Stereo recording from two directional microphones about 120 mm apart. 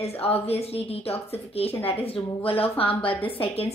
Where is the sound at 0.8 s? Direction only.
55° left (ahead or behind).